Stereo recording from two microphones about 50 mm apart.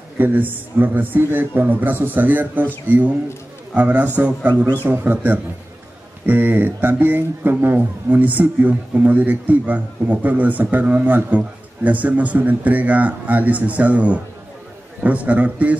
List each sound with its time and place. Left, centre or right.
0.2 s speech: right
3.7 s speech: right
6.2 s a man's voice: right